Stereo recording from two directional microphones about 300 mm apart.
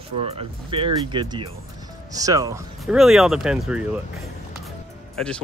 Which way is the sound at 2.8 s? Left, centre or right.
Centre.